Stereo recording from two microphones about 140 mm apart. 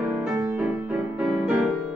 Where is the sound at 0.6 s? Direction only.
5° right (ahead or behind).